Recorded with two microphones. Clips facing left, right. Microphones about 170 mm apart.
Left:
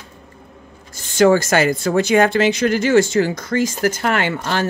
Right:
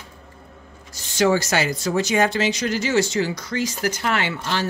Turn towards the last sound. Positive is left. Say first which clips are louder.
# left 4 dB
turn(degrees=50)  # may be behind; listen again after turning